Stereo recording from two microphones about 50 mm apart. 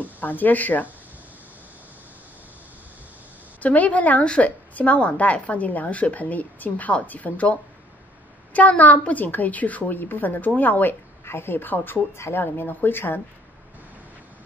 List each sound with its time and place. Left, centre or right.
0.0 s speech: left
3.6 s a woman's voice: left
8.5 s a woman's voice: left
11.2 s speech: left